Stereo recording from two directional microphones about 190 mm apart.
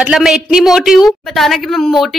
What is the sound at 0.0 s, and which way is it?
A woman's voice, 5° right (ahead or behind).